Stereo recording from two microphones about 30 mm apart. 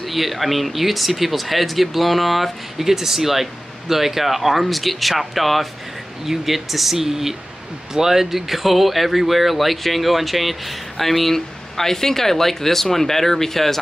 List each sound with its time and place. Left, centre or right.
0.0 s speech: centre